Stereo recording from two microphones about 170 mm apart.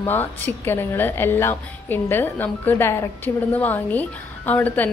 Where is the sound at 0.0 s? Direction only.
10° left (ahead or behind).